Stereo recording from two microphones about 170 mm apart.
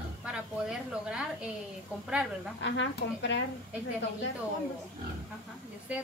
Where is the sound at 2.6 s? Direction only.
90° left.